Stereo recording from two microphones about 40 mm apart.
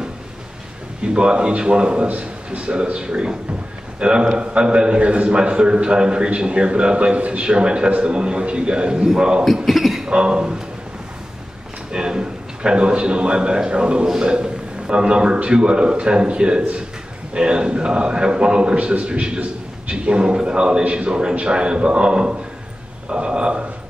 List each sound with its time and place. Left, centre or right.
1.0 s a man's voice: right
9.7 s beatboxing: centre
10.0 s a man's voice: right
11.9 s a man's voice: centre
14.0 s a man's voice: centre
14.3 s a man's voice: right